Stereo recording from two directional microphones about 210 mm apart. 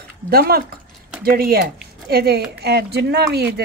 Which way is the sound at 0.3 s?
45° right (ahead or behind).